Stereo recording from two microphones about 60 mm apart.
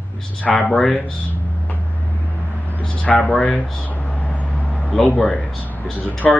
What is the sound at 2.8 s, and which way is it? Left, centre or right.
Speech, left.